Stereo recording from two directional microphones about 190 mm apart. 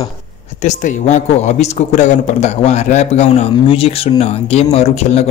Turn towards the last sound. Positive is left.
turn(degrees=35)  # may be behind; listen again after turning